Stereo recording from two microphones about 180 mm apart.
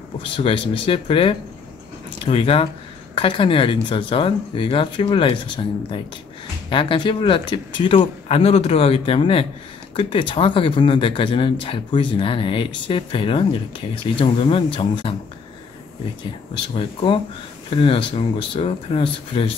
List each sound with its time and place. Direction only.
0.2 s speech: 30° left (ahead or behind)
16.5 s speech: 30° left (ahead or behind)